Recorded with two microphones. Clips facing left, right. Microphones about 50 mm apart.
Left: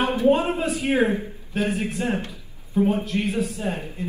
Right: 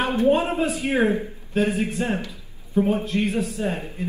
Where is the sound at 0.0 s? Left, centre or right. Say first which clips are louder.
Even; right.